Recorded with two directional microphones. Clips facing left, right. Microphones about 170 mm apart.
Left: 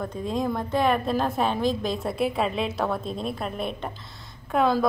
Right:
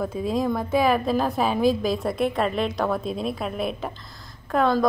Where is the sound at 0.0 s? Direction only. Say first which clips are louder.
Right 3 dB; 5° right (ahead or behind).